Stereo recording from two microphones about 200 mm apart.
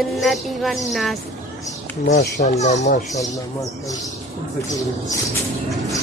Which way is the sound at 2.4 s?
35° left (ahead or behind).